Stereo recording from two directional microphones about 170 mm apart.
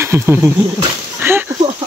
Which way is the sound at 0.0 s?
15° right (ahead or behind).